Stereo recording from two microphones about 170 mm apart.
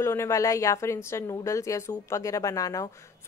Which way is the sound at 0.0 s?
15° left (ahead or behind).